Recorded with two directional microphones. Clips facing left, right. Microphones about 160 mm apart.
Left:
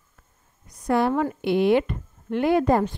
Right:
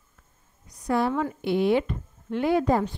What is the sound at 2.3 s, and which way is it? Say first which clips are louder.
Speech: left 3 dB; 60° left (ahead or behind).